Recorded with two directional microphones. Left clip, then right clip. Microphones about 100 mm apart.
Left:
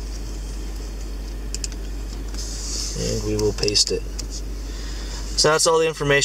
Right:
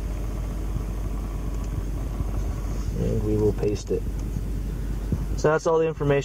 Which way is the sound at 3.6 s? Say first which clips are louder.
Left 7 dB; 15° left (ahead or behind).